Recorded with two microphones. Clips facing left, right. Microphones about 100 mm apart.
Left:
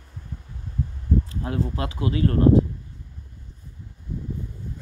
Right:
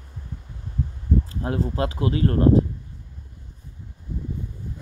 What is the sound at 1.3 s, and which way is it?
Speech, 30° right (ahead or behind).